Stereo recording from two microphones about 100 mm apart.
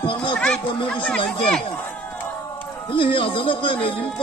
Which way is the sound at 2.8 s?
60° left (ahead or behind).